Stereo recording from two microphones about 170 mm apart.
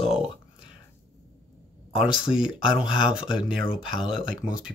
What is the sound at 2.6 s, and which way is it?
Speech, 30° left (ahead or behind).